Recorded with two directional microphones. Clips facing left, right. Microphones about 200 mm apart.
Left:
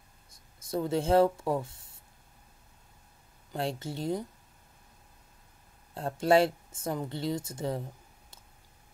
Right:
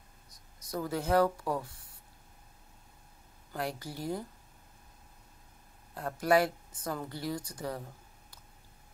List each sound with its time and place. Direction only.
0.3 s speech: 25° left (ahead or behind)
3.5 s speech: 25° left (ahead or behind)
5.9 s speech: 25° left (ahead or behind)